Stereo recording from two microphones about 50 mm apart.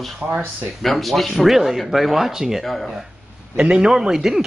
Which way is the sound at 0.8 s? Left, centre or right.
Centre.